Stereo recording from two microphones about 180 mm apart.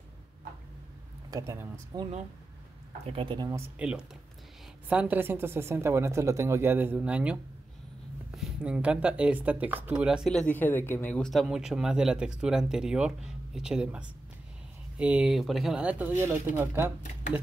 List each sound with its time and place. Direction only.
1.3 s a woman's voice: 15° right (ahead or behind)
3.1 s speech: 30° right (ahead or behind)
3.7 s a woman's voice: 5° right (ahead or behind)
8.4 s a woman's voice: 5° right (ahead or behind)